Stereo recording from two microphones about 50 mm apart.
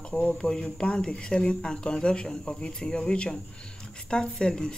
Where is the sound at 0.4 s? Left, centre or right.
Centre.